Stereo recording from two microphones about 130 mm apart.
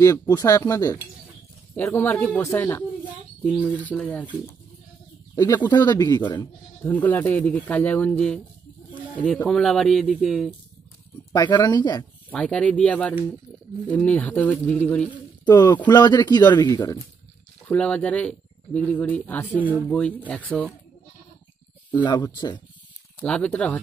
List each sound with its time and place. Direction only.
0.0 s speech: 25° left (ahead or behind)
5.3 s speech: 30° left (ahead or behind)
6.4 s speech: 15° left (ahead or behind); by 10.5 s centre (ahead or behind)
11.3 s speech: 30° left (ahead or behind)
12.3 s speech: 10° left (ahead or behind)
15.4 s speech: 35° left (ahead or behind)
17.7 s speech: 10° left (ahead or behind)
21.9 s speech: 35° left (ahead or behind)
23.2 s speech: 5° left (ahead or behind)